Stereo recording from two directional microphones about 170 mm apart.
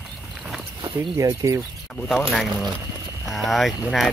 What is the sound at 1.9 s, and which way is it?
Speech, centre (ahead or behind).